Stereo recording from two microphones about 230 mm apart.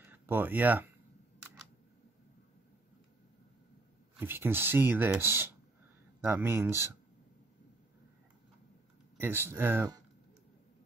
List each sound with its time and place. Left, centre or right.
0.0 s speech: centre
4.2 s speech: centre
9.2 s speech: centre